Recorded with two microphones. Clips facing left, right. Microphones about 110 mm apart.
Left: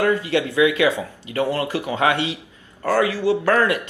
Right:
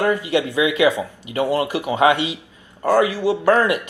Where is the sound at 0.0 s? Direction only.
15° right (ahead or behind).